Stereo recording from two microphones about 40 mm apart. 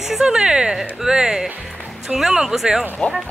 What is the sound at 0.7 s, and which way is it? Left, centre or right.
Speech, centre.